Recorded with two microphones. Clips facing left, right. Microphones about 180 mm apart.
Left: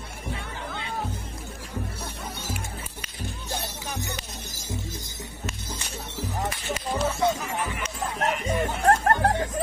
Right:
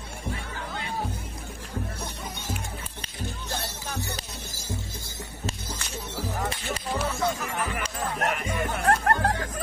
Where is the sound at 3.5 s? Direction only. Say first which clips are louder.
Left 2 dB; 15° left (ahead or behind).